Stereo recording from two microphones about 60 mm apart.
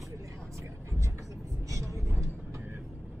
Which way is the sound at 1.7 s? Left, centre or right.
Right.